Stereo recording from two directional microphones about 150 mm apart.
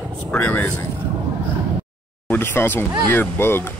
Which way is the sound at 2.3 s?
15° left (ahead or behind).